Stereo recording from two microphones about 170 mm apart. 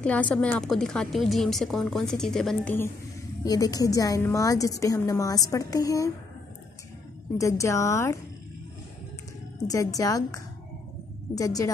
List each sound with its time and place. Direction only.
0.0 s a woman's voice: 10° left (ahead or behind)
3.4 s a woman's voice: 20° left (ahead or behind)
7.3 s a woman's voice: 20° left (ahead or behind)
9.7 s a woman's voice: 20° left (ahead or behind)